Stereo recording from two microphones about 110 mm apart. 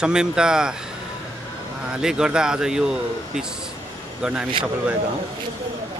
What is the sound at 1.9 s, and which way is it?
Speech, 5° right (ahead or behind).